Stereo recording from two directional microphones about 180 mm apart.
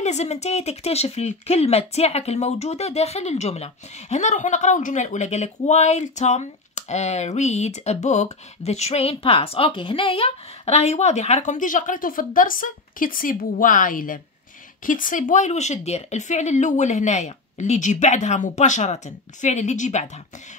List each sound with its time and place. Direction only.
0.0 s speech: 40° left (ahead or behind)